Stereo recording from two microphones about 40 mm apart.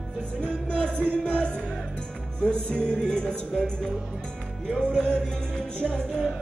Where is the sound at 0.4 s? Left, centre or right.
Left.